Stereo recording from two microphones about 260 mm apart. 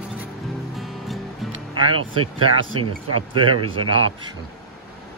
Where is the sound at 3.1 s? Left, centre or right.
Right.